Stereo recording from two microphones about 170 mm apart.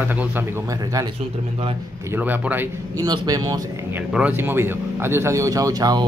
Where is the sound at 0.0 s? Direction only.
10° right (ahead or behind).